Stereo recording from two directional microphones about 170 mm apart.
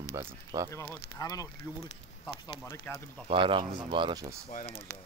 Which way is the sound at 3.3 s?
30° right (ahead or behind).